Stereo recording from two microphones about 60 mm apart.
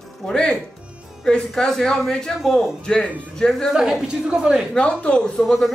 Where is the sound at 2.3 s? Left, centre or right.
Centre.